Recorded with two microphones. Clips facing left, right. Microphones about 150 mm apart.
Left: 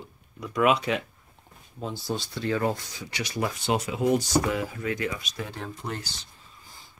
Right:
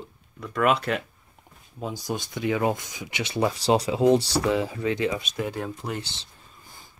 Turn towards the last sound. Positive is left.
turn(degrees=-10)  # may be behind; listen again after turning